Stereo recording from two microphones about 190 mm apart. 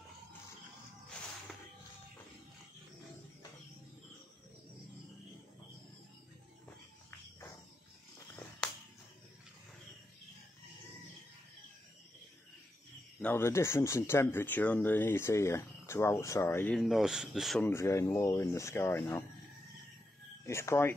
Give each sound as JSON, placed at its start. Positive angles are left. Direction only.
{"t": 13.2, "sound": "speech", "side_deg": 10}
{"t": 17.6, "sound": "speech", "side_deg": 15}
{"t": 20.4, "sound": "speech", "side_deg": 15}